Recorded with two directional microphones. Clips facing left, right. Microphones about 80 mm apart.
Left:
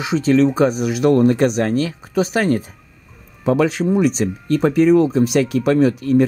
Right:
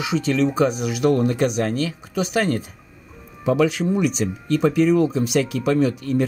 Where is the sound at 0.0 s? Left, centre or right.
Left.